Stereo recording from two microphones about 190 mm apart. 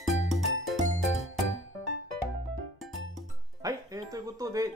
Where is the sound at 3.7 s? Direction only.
20° right (ahead or behind).